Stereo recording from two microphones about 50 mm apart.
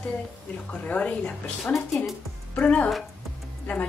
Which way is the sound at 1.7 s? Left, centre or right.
Centre.